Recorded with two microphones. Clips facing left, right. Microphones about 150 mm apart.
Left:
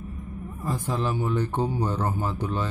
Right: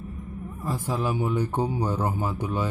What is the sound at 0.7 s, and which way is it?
A man's voice, 10° right (ahead or behind).